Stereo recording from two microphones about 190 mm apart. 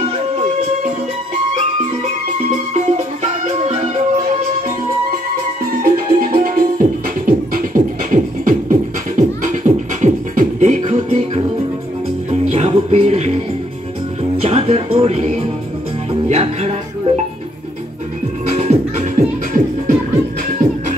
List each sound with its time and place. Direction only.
2.7 s music: 40° right (ahead or behind)
5.7 s music: 50° right (ahead or behind)
14.4 s music: 35° right (ahead or behind)
18.5 s music: 35° right (ahead or behind)